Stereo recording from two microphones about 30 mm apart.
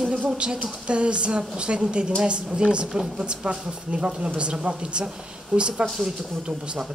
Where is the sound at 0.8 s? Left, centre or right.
Right.